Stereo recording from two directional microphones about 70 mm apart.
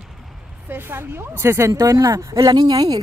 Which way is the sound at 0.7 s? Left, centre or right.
Right.